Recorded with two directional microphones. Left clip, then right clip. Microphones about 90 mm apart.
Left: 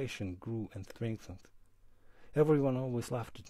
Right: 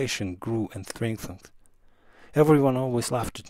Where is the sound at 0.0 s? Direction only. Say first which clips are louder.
Right 11 dB; 20° right (ahead or behind).